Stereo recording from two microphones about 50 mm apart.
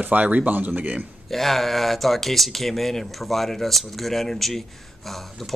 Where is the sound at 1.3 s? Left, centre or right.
Centre.